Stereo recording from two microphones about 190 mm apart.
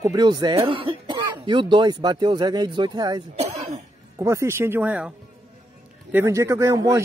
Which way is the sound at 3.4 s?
35° right (ahead or behind).